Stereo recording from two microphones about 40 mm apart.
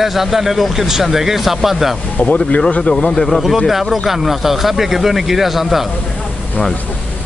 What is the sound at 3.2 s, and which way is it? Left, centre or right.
Speech, centre.